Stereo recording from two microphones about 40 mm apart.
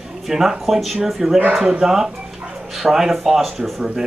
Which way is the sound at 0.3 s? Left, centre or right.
Centre.